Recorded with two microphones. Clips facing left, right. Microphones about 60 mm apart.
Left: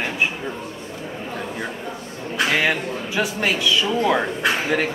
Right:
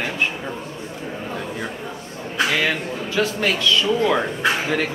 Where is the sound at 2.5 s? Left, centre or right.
Left.